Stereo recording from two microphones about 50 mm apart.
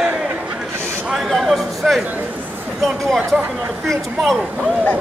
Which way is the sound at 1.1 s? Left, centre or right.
Centre.